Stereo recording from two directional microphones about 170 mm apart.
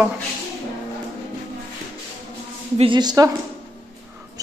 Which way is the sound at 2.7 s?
30° right (ahead or behind).